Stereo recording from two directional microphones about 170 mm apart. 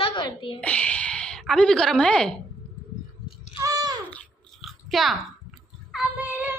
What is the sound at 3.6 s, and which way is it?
Babbling, 20° right (ahead or behind).